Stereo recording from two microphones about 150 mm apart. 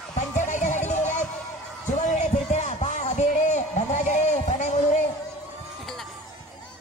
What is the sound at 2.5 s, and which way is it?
Music, 50° left (ahead or behind).